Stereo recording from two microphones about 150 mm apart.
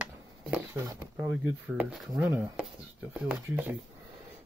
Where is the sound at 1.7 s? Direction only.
Centre (ahead or behind).